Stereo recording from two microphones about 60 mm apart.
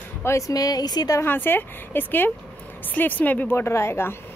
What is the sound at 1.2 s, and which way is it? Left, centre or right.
A woman's voice, left.